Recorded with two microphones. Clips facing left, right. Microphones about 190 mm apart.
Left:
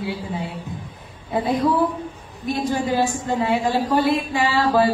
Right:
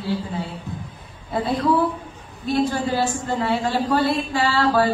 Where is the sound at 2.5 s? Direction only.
15° left (ahead or behind).